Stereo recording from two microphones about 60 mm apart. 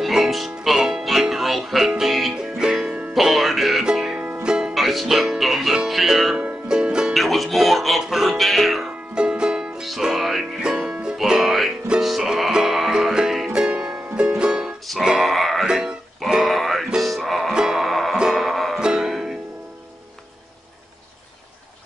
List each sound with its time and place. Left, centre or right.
0.0 s music: centre
4.7 s music: centre
7.2 s music: centre
9.1 s music: centre
9.8 s music: centre
10.6 s music: centre
15.6 s music: centre
16.4 s music: centre
18.8 s music: centre